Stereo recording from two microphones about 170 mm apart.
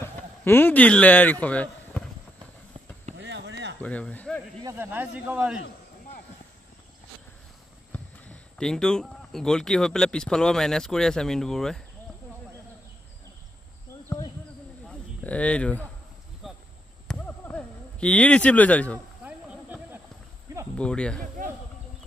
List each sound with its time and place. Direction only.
0.0 s a man's voice: 15° left (ahead or behind)
3.2 s chop: 90° right
3.8 s speech: 10° left (ahead or behind)
4.6 s speech: 10° right (ahead or behind)
7.9 s speech: 5° left (ahead or behind)
14.9 s speech: 5° left (ahead or behind)
16.4 s a sound: centre (ahead or behind)
19.2 s a sound: 10° right (ahead or behind)
20.7 s speech: 5° left (ahead or behind)